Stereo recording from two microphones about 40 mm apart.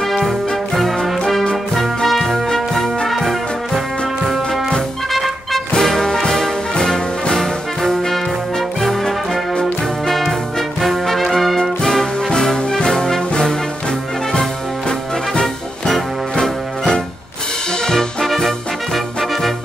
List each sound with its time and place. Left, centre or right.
1.8 s music: centre
5.1 s music: centre
7.3 s brass instrument: centre
10.0 s music: centre
10.8 s brass instrument: centre
11.8 s music: centre
12.6 s brass instrument: centre
15.4 s music: centre